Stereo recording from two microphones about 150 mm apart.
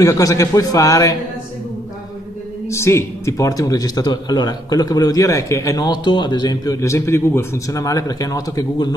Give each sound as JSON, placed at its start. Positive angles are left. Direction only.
{"t": 0.0, "sound": "a man's voice", "side_deg": 25}
{"t": 2.7, "sound": "a man's voice", "side_deg": 20}